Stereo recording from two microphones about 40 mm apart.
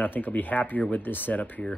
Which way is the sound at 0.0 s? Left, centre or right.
Left.